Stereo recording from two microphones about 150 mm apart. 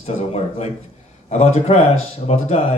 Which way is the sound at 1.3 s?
45° left (ahead or behind).